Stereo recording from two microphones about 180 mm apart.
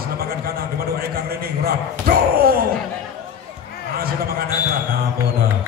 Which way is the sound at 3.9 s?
55° right (ahead or behind).